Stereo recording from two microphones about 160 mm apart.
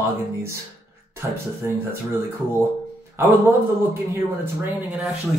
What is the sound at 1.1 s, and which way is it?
Speech, 15° right (ahead or behind).